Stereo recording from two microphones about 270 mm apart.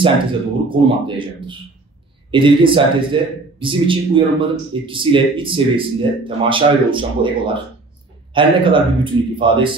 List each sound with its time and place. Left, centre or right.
0.7 s a man's voice: centre